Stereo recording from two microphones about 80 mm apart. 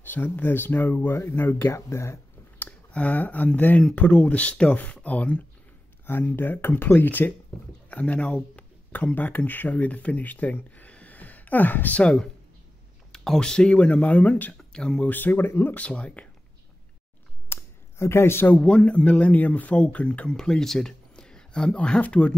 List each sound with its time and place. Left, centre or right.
0.0 s speech: left
2.6 s speech: centre
15.0 s speech: left
15.7 s speech: centre
17.5 s a sound: left
18.6 s speech: centre